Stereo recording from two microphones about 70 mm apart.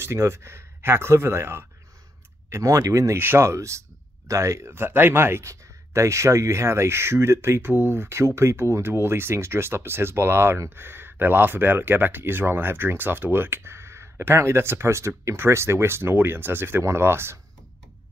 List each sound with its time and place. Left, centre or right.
0.0 s speech: right
2.5 s speech: right
3.2 s speech: right